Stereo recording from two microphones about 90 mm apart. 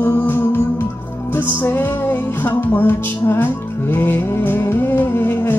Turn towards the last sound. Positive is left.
turn(degrees=25)  # may be behind; listen again after turning